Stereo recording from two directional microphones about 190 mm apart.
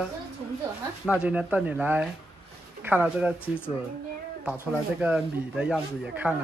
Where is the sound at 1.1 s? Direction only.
5° right (ahead or behind).